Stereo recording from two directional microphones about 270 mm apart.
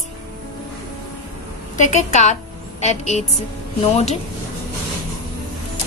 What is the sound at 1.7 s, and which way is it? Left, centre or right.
A woman's voice, left.